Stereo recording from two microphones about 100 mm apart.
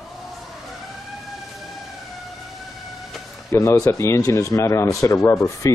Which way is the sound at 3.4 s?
30° left (ahead or behind).